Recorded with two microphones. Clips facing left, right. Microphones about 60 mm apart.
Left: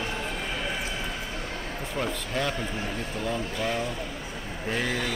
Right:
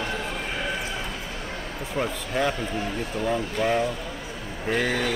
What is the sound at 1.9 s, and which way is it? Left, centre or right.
Speech, centre.